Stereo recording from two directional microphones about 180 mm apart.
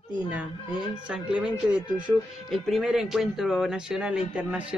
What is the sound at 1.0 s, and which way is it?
A man's voice, 5° right (ahead or behind).